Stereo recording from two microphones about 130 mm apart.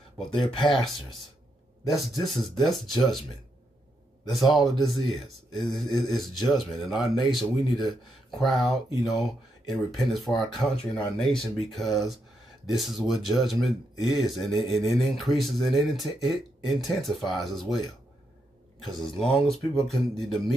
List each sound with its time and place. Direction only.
0.3 s speech: 40° left (ahead or behind)
0.8 s speech: centre (ahead or behind)
4.3 s speech: centre (ahead or behind)
18.9 s speech: 5° left (ahead or behind)